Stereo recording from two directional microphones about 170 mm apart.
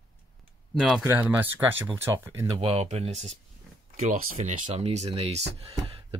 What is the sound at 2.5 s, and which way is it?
Speech, 35° right (ahead or behind).